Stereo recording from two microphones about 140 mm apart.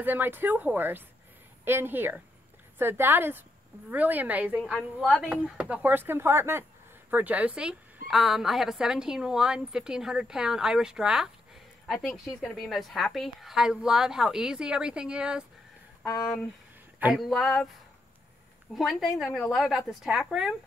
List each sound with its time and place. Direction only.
0.0 s a woman's voice: 15° right (ahead or behind); by 17.6 s centre (ahead or behind)
18.8 s a woman's voice: centre (ahead or behind)